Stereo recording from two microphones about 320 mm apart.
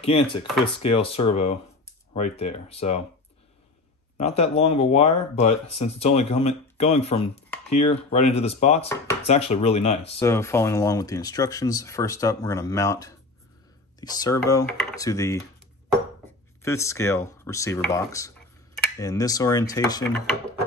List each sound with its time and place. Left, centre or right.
0.0 s speech: centre
4.2 s speech: centre
16.6 s speech: centre